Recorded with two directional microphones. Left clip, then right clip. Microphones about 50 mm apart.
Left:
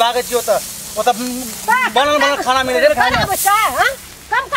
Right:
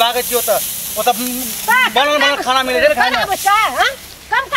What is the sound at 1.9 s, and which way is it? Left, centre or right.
Speech, centre.